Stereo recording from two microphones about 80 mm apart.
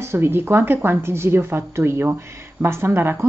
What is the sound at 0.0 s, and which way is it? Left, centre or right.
Speech, right.